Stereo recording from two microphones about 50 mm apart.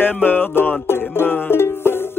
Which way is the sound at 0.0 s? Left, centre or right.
Left.